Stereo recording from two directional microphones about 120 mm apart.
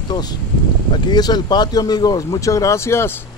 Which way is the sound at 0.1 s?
35° left (ahead or behind).